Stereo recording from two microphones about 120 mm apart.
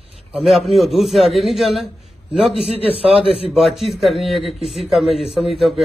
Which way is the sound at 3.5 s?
Centre (ahead or behind).